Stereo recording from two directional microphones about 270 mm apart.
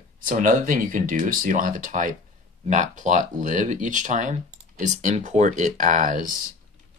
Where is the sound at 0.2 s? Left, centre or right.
Right.